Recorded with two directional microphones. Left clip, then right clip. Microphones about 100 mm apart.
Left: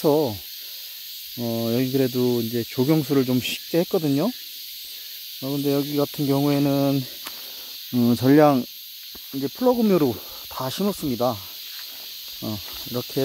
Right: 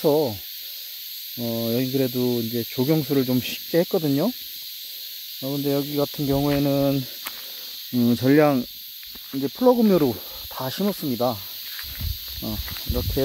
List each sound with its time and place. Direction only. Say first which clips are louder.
0.0 s snake: even; 30° left (ahead or behind)
1.4 s speech: left 1 dB; 45° left (ahead or behind)
1.7 s speech: left 1 dB; 30° left (ahead or behind); by 4.3 s 5° left (ahead or behind)
5.4 s speech: left 1 dB; 20° left (ahead or behind)
9.3 s speech: right 2 dB; 5° right (ahead or behind)
10.5 s speech: left 1 dB; 20° left (ahead or behind)